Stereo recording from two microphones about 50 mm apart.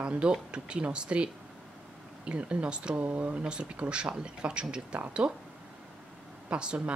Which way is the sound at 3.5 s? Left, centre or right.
Centre.